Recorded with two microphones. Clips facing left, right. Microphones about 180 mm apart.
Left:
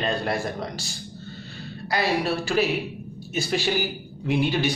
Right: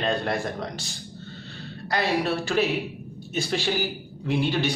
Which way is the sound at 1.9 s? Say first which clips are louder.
Even; 5° left (ahead or behind).